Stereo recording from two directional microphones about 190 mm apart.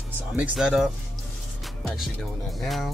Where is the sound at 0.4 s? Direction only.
5° right (ahead or behind).